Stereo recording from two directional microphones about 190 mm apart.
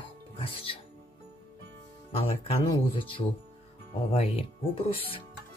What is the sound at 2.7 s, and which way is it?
Speech, 30° left (ahead or behind).